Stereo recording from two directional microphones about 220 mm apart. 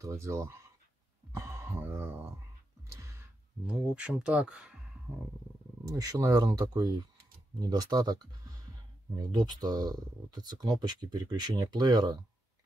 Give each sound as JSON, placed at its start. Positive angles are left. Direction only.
{"t": 0.0, "sound": "speech", "side_deg": -15}
{"t": 1.3, "sound": "music", "side_deg": -10}
{"t": 2.9, "sound": "a sound", "side_deg": -15}
{"t": 3.6, "sound": "speech", "side_deg": -5}
{"t": 5.9, "sound": "speech", "side_deg": -15}